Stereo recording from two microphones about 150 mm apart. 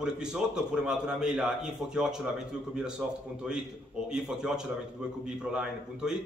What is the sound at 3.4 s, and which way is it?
A man's voice, 5° right (ahead or behind).